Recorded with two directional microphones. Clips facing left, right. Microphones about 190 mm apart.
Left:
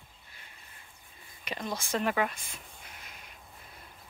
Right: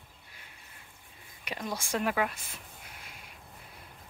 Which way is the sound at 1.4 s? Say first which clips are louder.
Even; 10° right (ahead or behind).